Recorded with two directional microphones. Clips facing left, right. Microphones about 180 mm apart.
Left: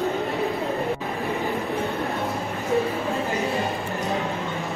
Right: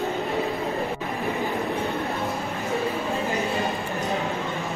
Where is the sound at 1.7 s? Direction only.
Centre (ahead or behind).